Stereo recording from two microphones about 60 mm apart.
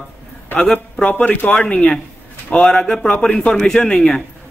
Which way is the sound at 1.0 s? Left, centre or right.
Left.